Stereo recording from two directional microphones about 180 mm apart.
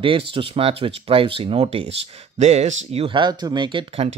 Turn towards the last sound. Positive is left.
turn(degrees=-30)  # may be behind; listen again after turning